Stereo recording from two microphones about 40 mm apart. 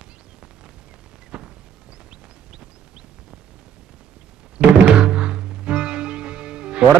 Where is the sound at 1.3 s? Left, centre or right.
Right.